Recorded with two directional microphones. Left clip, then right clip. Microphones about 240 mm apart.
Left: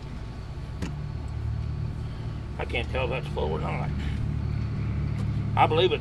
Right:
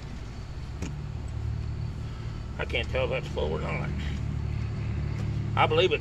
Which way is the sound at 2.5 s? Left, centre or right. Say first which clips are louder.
Right 1 dB; centre.